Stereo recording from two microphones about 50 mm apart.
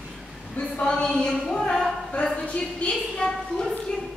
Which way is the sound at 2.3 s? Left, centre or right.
Left.